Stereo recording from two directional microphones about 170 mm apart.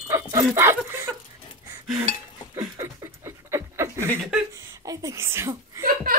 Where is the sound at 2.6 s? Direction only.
15° right (ahead or behind).